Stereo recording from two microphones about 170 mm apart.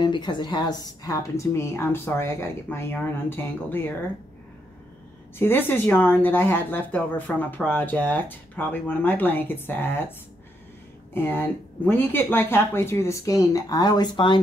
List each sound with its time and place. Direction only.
0.0 s speech: 25° left (ahead or behind)
5.4 s speech: 10° left (ahead or behind)
11.1 s speech: 10° left (ahead or behind)